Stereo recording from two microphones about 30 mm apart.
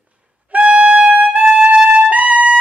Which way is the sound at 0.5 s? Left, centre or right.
Right.